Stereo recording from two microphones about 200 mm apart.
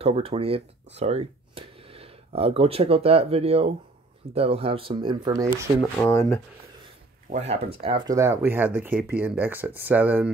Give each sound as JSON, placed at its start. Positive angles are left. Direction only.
{"t": 0.0, "sound": "speech", "side_deg": -30}
{"t": 5.8, "sound": "speech", "side_deg": 10}
{"t": 7.2, "sound": "speech", "side_deg": -35}
{"t": 7.8, "sound": "speech", "side_deg": -20}